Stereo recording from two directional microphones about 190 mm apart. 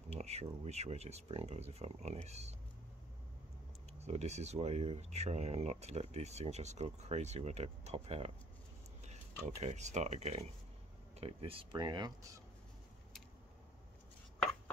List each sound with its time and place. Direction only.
0.1 s speech: 35° right (ahead or behind)
4.0 s speech: 35° right (ahead or behind); by 12.4 s 20° right (ahead or behind)